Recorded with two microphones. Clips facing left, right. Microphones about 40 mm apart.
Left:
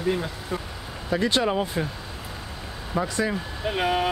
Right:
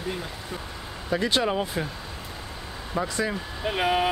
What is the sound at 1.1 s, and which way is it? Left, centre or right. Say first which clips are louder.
Speech: left 1 dB; centre.